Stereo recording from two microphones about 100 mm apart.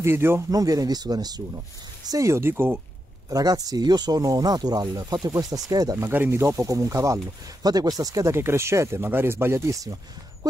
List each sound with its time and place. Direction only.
0.0 s speech: 25° right (ahead or behind)
0.5 s speech: 35° right (ahead or behind)
3.3 s speech: 35° right (ahead or behind)
6.0 s speech: 25° right (ahead or behind)